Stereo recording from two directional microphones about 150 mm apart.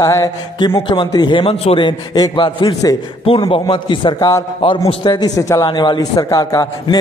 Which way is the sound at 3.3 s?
40° left (ahead or behind).